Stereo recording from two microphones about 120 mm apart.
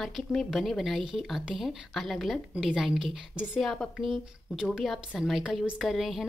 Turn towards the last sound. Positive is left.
turn(degrees=0)  # may be behind; listen again after turning